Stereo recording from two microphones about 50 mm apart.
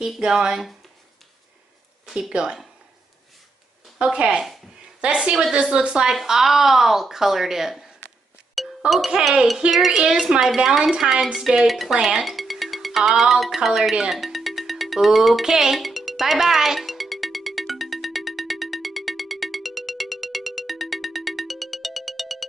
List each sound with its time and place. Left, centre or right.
0.3 s speech: centre
2.0 s a sound: centre
2.3 s speech: centre
4.0 s speech: centre
8.5 s music: centre
9.7 s speech: centre
10.8 s speech: centre
12.3 s music: centre